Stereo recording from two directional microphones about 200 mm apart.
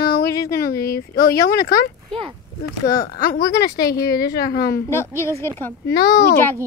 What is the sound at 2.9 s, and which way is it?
A woman's voice, 50° left (ahead or behind).